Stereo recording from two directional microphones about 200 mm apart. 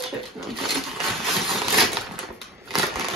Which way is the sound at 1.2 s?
Centre (ahead or behind).